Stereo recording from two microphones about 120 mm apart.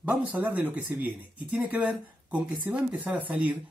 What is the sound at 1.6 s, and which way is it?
Speech, 15° right (ahead or behind).